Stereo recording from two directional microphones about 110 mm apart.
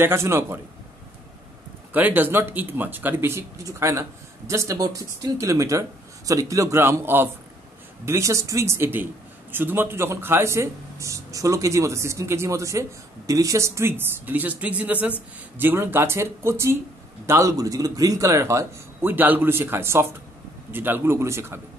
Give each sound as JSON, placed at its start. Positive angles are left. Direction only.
{"t": 0.0, "sound": "speech", "side_deg": -25}
{"t": 2.0, "sound": "speech", "side_deg": -15}